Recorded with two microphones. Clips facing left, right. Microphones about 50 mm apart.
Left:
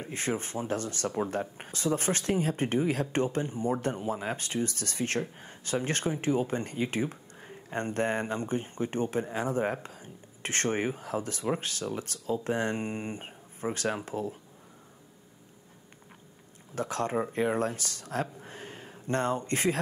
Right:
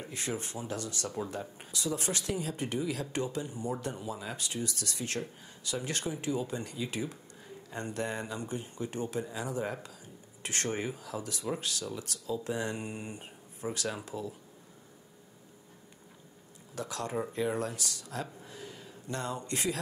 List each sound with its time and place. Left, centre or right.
0.0 s speech: left
16.7 s speech: left